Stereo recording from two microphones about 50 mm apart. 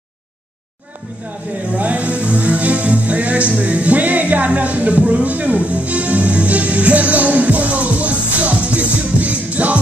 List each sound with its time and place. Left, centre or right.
1.7 s music: right